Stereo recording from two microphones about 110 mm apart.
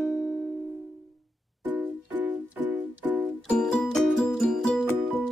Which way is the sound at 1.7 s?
15° right (ahead or behind).